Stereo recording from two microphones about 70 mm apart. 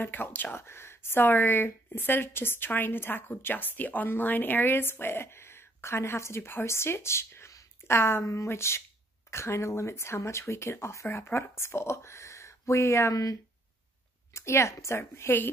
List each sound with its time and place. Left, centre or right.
0.0 s speech: left
13.1 s speech: left
14.3 s speech: left